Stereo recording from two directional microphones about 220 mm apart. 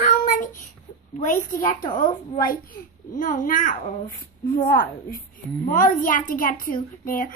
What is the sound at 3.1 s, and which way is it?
A woman's voice, 35° left (ahead or behind).